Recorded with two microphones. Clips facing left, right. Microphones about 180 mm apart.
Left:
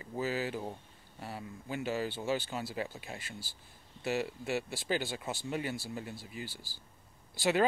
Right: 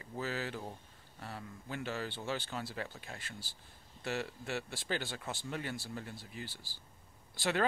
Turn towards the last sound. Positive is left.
turn(degrees=5)  # may be behind; listen again after turning